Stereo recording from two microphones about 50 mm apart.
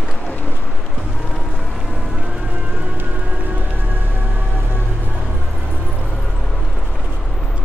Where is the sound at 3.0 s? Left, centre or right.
Right.